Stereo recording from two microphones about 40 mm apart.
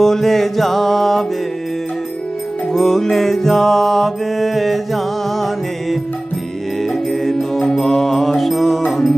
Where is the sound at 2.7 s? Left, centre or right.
Centre.